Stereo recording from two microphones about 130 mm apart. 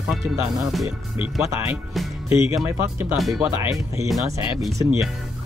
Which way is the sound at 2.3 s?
20° right (ahead or behind).